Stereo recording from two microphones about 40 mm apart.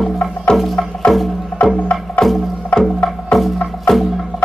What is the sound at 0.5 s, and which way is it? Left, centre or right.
Music, centre.